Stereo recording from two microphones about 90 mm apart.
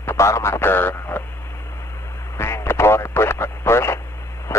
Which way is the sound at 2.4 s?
30° left (ahead or behind).